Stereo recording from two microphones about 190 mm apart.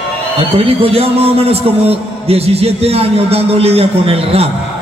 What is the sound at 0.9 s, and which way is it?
A man's voice, 30° right (ahead or behind).